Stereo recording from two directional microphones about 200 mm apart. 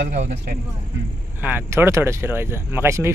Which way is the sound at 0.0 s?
60° right (ahead or behind).